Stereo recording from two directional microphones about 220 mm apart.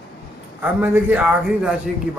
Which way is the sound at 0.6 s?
10° right (ahead or behind).